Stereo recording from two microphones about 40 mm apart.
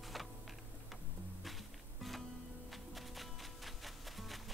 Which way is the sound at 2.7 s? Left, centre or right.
Centre.